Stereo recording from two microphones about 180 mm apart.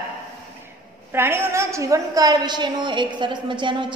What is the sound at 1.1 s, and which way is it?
A woman's voice, 15° right (ahead or behind).